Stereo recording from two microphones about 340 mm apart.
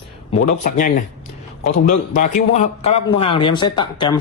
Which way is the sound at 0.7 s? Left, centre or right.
Left.